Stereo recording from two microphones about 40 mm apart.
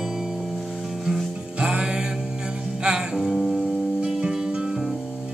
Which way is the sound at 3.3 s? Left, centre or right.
Centre.